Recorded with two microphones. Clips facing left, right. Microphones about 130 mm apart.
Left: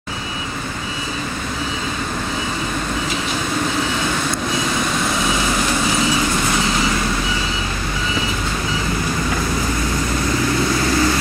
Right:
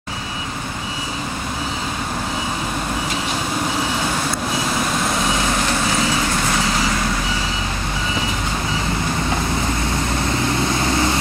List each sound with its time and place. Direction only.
10.8 s vehicle: 25° right (ahead or behind)